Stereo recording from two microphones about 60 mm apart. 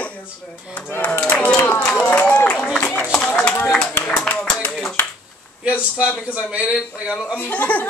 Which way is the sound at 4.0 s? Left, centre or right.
Centre.